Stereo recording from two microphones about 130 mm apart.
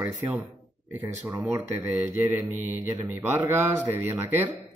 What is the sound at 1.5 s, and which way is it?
Speech, 15° right (ahead or behind).